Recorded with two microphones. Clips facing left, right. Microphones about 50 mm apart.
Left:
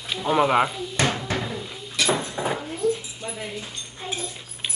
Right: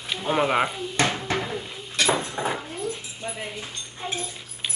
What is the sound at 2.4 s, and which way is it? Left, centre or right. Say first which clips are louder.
Dishes: left 1 dB; centre.